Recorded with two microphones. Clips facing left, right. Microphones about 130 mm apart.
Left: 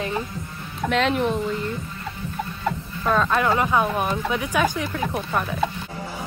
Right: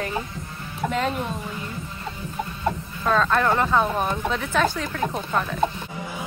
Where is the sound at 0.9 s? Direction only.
75° left (ahead or behind).